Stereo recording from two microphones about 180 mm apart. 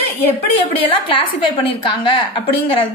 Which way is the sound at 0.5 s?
30° left (ahead or behind).